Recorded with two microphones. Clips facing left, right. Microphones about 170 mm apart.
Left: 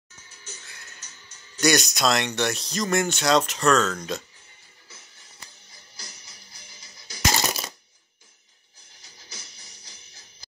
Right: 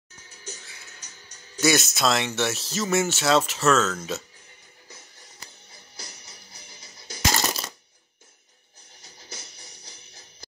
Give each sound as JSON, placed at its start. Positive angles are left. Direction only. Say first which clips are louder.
{"t": 0.7, "sound": "music", "louder": "even", "side_deg": 0}
{"t": 1.6, "sound": "speech", "louder": "even", "side_deg": 0}
{"t": 7.3, "sound": "coin", "louder": "even", "side_deg": 10}
{"t": 9.3, "sound": "music", "louder": "right 4 dB", "side_deg": -60}